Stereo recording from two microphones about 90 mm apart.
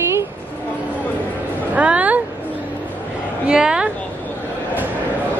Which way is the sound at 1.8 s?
15° right (ahead or behind).